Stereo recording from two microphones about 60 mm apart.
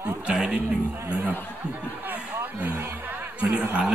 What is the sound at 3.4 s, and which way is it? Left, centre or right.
Speech, right.